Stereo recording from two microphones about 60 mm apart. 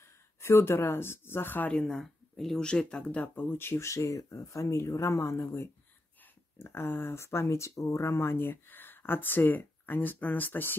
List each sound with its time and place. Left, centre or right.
0.4 s speech: left
1.9 s speech: centre
3.3 s speech: left
8.2 s speech: left